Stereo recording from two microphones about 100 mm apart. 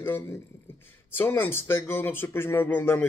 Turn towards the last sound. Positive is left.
turn(degrees=20)  # may be behind; listen again after turning